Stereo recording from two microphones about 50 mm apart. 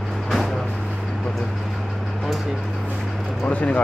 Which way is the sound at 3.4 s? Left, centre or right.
Left.